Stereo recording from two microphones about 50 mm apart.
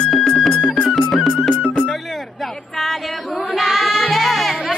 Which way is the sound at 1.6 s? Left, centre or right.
Left.